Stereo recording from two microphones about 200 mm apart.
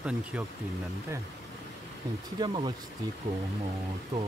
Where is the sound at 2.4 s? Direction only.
20° right (ahead or behind).